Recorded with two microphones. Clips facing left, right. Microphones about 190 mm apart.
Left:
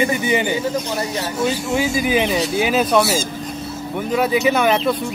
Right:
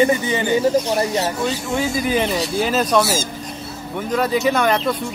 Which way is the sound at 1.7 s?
5° left (ahead or behind).